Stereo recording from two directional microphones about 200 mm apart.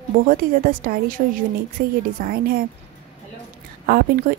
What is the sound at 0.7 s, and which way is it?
A woman's voice, 45° right (ahead or behind).